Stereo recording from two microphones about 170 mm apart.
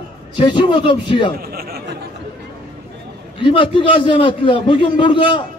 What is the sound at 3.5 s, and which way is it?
A man's voice, 30° left (ahead or behind).